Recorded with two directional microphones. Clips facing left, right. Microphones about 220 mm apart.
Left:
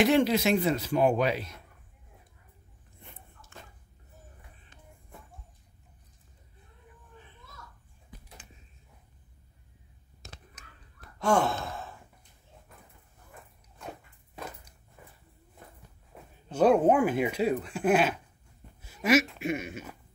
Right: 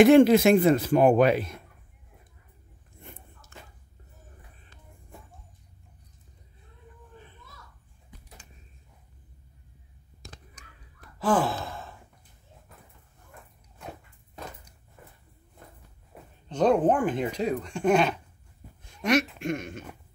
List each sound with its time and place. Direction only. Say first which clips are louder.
0.0 s speech: right 8 dB; 50° right (ahead or behind)
11.1 s gasp: right 1 dB; centre (ahead or behind)
16.1 s a sound: right 1 dB; 5° right (ahead or behind)
16.4 s speech: even; 5° left (ahead or behind)